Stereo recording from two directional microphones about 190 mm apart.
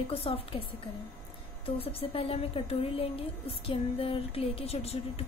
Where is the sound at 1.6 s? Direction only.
30° left (ahead or behind).